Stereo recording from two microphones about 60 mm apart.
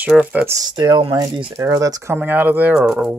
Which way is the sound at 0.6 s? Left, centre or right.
Right.